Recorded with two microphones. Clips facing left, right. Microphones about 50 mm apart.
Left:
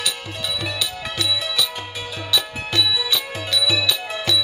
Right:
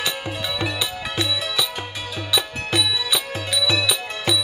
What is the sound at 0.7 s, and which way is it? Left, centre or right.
Music, centre.